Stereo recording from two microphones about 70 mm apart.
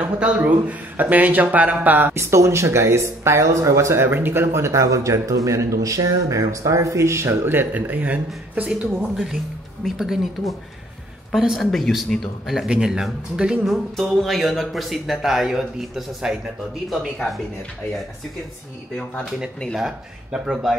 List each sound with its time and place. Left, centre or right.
0.0 s a man's voice: centre
2.3 s speech: right; by 9.1 s centre
9.1 s speech: centre
11.3 s speech: centre
12.6 s speech: centre
13.7 s speech: centre
20.3 s speech: centre